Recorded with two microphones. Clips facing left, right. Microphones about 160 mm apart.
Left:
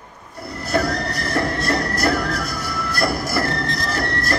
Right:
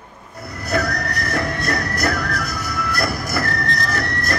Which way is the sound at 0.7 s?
30° left (ahead or behind).